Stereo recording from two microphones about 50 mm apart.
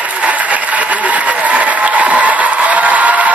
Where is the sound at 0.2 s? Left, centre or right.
Right.